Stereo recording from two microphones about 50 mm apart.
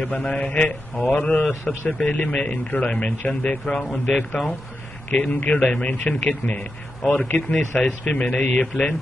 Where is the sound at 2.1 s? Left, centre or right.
Left.